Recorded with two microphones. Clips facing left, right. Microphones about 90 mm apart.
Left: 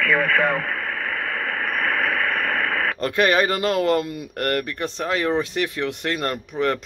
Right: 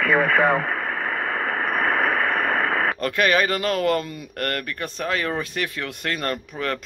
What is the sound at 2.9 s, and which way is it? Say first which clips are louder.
Speech: left 4 dB; 25° left (ahead or behind).